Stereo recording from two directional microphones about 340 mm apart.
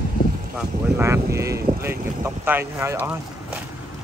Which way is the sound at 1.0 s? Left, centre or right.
Centre.